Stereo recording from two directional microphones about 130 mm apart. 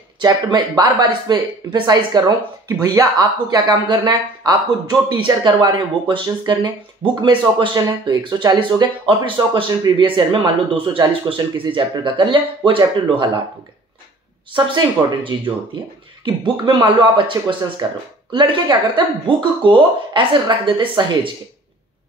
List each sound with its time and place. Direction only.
0.2 s speech: 30° right (ahead or behind)
15.2 s speech: 40° right (ahead or behind)